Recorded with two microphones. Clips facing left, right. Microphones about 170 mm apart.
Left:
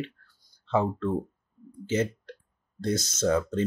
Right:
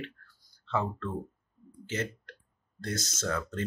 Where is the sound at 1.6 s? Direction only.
20° left (ahead or behind).